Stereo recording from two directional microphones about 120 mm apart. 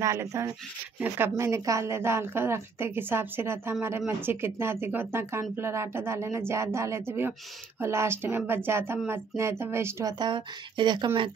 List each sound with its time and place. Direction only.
0.0 s speech: 25° right (ahead or behind)
10.1 s speech: 40° right (ahead or behind)